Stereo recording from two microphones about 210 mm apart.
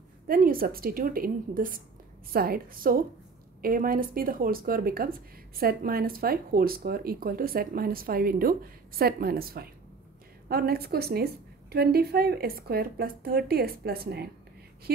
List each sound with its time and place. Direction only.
0.3 s speech: 45° right (ahead or behind)